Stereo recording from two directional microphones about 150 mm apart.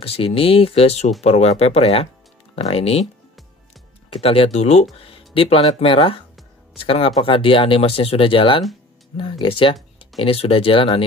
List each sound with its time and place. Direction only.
0.0 s speech: 40° left (ahead or behind)
4.1 s speech: 40° left (ahead or behind)